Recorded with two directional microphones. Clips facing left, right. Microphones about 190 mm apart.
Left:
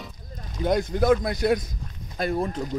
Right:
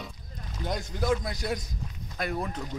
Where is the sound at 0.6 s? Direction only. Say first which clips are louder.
Left 8 dB; 55° left (ahead or behind).